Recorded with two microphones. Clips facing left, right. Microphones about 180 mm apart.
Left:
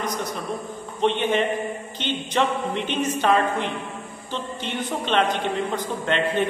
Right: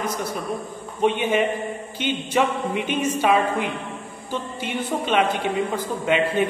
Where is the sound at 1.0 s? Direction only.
10° right (ahead or behind).